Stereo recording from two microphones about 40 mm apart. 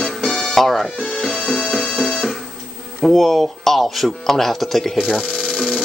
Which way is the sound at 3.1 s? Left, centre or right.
Centre.